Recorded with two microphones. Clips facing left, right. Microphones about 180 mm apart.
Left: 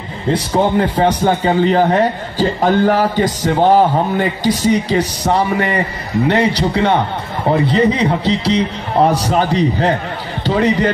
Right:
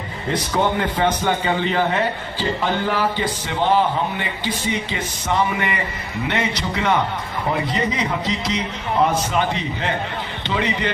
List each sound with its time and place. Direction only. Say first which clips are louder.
0.3 s a man's voice: left 6 dB; 35° left (ahead or behind)